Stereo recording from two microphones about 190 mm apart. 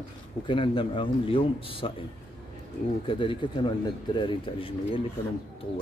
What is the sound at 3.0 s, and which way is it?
Speech, 25° left (ahead or behind).